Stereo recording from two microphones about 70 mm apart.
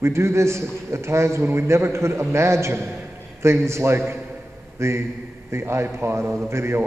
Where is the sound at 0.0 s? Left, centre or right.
Right.